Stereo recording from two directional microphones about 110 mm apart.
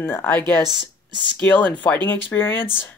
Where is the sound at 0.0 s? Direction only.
20° left (ahead or behind).